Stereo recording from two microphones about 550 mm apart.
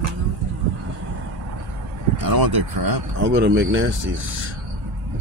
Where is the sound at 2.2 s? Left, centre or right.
Right.